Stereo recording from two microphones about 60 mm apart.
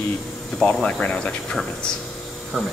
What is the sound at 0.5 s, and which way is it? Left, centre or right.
Speech, centre.